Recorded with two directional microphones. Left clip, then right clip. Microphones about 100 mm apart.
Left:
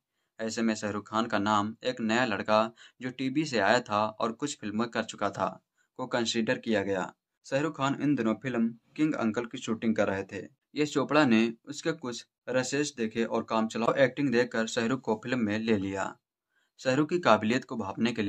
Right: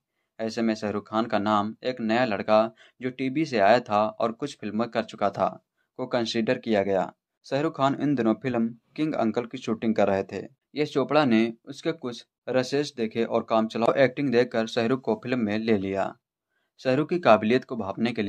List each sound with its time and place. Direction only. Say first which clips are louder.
0.4 s speech: right 4 dB; 25° right (ahead or behind); by 10.5 s 40° right (ahead or behind)
10.7 s speech: right 3 dB; 25° right (ahead or behind)
12.4 s speech: right 4 dB; 30° right (ahead or behind)